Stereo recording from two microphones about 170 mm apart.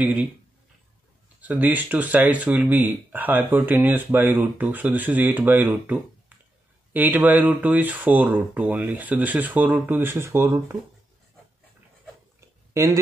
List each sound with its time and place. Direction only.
0.0 s speech: 10° right (ahead or behind)
1.4 s speech: 10° right (ahead or behind)
12.4 s a sound: 15° right (ahead or behind)